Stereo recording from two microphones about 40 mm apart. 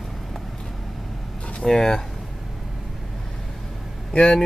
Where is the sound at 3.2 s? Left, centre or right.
Centre.